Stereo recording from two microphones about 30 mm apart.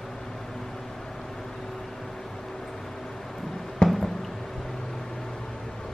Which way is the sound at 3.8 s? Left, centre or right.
Left.